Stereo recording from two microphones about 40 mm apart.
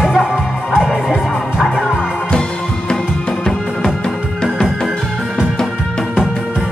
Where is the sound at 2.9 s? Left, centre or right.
Centre.